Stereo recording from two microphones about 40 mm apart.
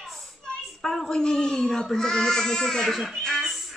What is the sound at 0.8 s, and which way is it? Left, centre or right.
Speech, centre.